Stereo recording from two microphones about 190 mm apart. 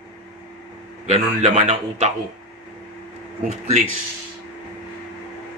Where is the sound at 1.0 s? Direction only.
35° right (ahead or behind).